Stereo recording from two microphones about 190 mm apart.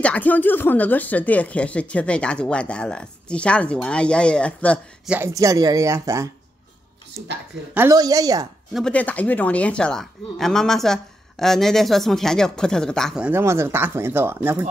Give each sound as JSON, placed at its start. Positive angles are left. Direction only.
{"t": 0.0, "sound": "speech", "side_deg": 5}
{"t": 5.0, "sound": "speech", "side_deg": -5}
{"t": 5.3, "sound": "speech", "side_deg": -20}
{"t": 7.7, "sound": "a woman's voice", "side_deg": -15}
{"t": 8.7, "sound": "speech", "side_deg": 5}